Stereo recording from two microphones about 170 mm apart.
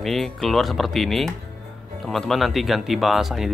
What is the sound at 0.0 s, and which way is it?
Speech, centre (ahead or behind).